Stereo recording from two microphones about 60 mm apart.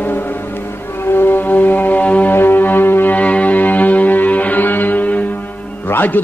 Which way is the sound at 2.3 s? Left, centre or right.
Left.